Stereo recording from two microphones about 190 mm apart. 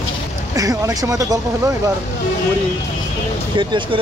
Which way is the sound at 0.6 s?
15° right (ahead or behind).